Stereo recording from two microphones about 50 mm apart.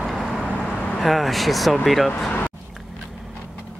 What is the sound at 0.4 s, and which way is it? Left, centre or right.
Vehicle, left.